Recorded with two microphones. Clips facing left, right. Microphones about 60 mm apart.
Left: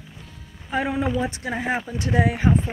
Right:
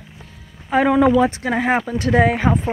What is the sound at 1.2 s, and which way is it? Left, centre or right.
Speech, right.